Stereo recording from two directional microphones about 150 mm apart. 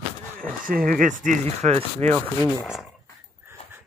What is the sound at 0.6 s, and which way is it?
Speech, 70° right (ahead or behind).